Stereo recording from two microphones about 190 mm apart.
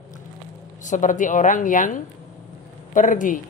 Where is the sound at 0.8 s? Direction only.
40° left (ahead or behind).